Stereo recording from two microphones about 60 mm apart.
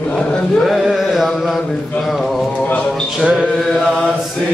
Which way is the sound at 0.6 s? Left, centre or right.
Centre.